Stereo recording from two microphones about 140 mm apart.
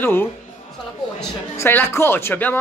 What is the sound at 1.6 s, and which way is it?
Speech, 15° left (ahead or behind).